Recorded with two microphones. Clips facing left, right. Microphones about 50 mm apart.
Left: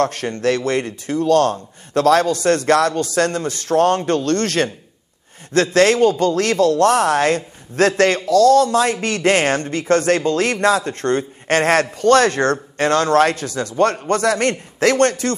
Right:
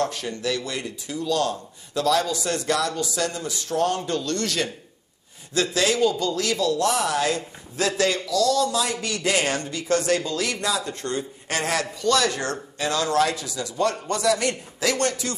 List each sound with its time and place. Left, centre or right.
0.0 s speech: left